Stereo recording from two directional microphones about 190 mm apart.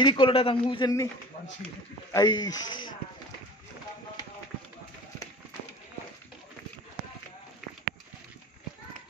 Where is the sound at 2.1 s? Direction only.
20° left (ahead or behind).